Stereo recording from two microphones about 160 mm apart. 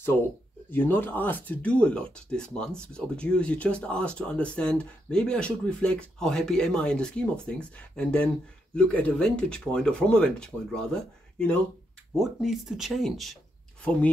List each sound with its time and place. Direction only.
0.7 s speech: 10° left (ahead or behind)